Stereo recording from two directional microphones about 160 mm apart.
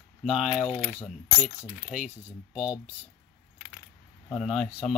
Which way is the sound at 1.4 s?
5° right (ahead or behind).